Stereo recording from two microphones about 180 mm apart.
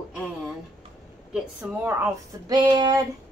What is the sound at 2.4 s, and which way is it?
Female singing, 25° right (ahead or behind).